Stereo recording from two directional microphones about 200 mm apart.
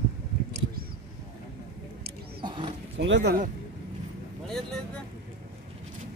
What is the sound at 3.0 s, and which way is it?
Speech, 60° right (ahead or behind).